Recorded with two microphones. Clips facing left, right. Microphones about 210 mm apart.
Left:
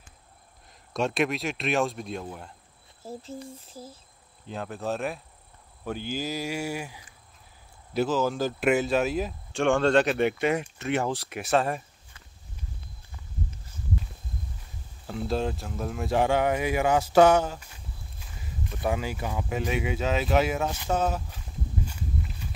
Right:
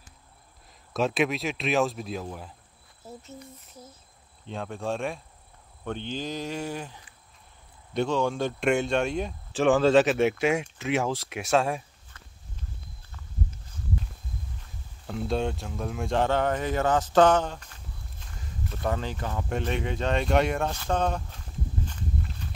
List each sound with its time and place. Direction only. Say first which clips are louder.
0.9 s speech: right 1 dB; centre (ahead or behind)
3.0 s a sound: left 5 dB; 30° left (ahead or behind)
4.5 s speech: even; centre (ahead or behind)
15.0 s speech: even; centre (ahead or behind)
21.8 s walk: even; 5° left (ahead or behind)